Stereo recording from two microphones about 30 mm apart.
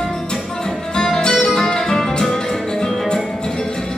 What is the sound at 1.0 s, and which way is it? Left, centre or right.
Music, left.